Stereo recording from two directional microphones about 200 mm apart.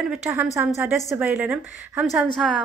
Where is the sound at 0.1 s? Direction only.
5° right (ahead or behind).